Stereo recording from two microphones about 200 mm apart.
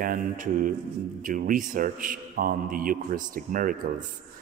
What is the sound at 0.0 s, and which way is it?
Speech, 45° right (ahead or behind).